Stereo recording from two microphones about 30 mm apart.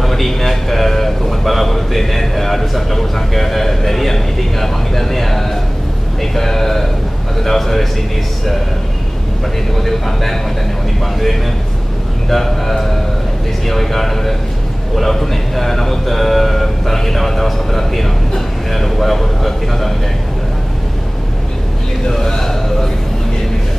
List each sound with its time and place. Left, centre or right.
0.0 s a man's voice: centre
9.8 s speech: centre
12.3 s a man's voice: centre
22.3 s a man's voice: centre